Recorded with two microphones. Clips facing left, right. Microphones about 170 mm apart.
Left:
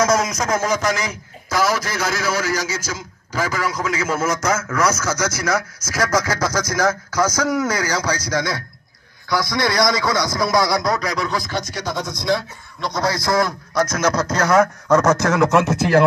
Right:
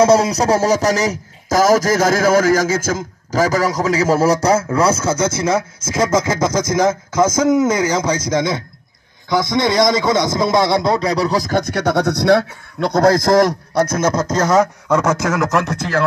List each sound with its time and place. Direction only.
0.0 s a man's voice: 30° right (ahead or behind)
11.6 s speech: 60° right (ahead or behind)
13.9 s speech: 25° right (ahead or behind)
14.9 s a man's voice: 10° right (ahead or behind); by 16.0 s 10° left (ahead or behind)